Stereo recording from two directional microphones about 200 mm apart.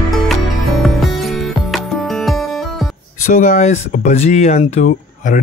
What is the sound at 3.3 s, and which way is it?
Speech, 40° left (ahead or behind).